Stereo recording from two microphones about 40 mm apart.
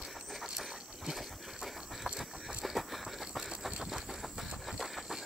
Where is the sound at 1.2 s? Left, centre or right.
Centre.